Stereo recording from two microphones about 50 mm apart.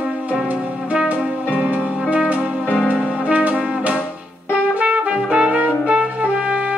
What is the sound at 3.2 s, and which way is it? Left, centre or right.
Brass instrument, right.